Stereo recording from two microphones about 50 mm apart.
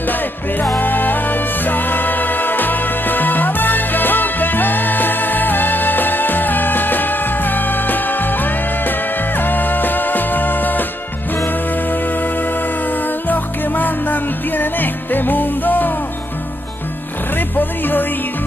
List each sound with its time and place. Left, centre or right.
0.0 s music: left
17.4 s music: left